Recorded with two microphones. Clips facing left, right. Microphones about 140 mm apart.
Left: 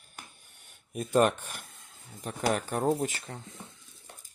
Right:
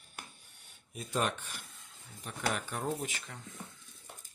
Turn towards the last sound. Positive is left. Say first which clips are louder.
# left 8 dB
turn(degrees=35)  # may be behind; listen again after turning